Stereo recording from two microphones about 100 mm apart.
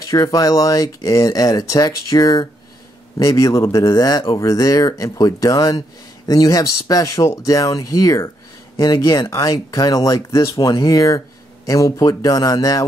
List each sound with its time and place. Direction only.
0.1 s speech: 35° left (ahead or behind)